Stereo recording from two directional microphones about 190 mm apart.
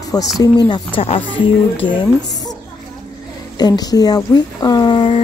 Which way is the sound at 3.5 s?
20° left (ahead or behind).